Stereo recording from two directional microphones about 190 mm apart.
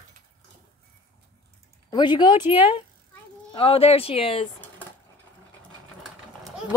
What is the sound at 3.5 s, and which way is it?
Speech, 30° left (ahead or behind).